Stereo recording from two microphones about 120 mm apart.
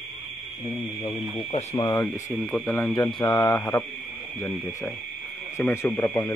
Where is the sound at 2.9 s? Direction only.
40° left (ahead or behind).